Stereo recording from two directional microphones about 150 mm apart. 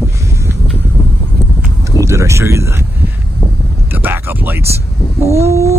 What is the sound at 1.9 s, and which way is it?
Speech, 20° right (ahead or behind).